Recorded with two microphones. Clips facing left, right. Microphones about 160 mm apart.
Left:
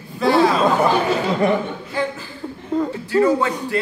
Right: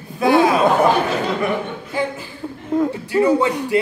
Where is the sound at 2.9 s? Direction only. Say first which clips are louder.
Left 2 dB; 15° right (ahead or behind).